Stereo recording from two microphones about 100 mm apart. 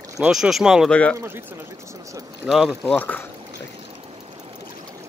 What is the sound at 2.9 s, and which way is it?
Speech, 15° left (ahead or behind).